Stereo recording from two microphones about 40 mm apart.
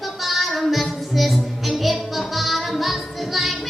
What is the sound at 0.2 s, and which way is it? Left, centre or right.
Music, centre.